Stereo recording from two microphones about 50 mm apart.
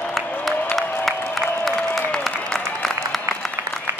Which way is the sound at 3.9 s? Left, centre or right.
Right.